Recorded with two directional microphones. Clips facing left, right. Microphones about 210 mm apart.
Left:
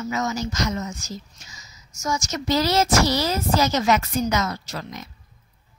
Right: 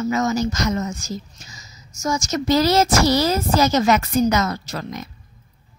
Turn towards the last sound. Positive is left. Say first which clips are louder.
# right 4 dB
turn(degrees=-50)  # may be behind; listen again after turning